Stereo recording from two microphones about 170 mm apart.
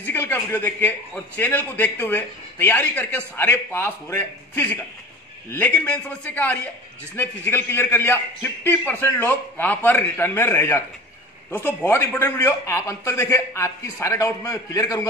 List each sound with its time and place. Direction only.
0.0 s a man's voice: 10° left (ahead or behind)